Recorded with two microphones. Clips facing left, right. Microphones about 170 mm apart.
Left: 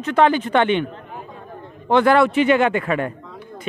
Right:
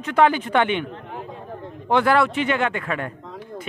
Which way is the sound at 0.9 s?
85° right.